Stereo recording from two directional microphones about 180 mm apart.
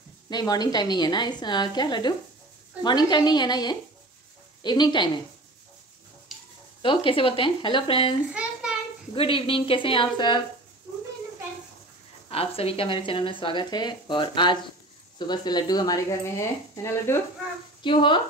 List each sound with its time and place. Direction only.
0.3 s speech: 20° left (ahead or behind)
6.8 s speech: 30° left (ahead or behind)
8.3 s a sound: 5° right (ahead or behind)
9.1 s speech: 30° left (ahead or behind)
12.3 s speech: 30° left (ahead or behind); by 17.2 s 15° left (ahead or behind)
17.8 s speech: 25° left (ahead or behind)